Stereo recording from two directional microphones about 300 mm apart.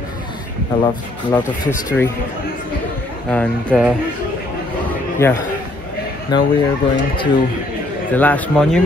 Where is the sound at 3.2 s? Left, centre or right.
Centre.